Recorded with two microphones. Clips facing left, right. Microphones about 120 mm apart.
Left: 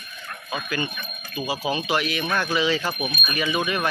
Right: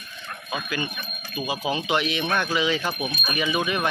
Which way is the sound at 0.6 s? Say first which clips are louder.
Left 1 dB; 10° right (ahead or behind).